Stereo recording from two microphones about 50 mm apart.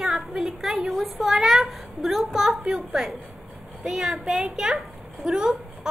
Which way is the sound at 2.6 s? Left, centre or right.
Centre.